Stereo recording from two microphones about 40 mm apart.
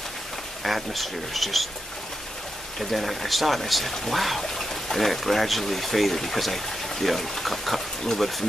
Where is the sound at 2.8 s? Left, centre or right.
Centre.